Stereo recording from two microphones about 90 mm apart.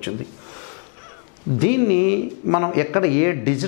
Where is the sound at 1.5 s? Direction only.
15° left (ahead or behind).